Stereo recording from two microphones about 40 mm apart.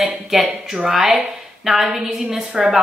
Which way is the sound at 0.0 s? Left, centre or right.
Centre.